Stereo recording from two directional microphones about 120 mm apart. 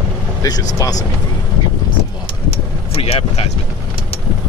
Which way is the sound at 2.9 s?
60° left (ahead or behind).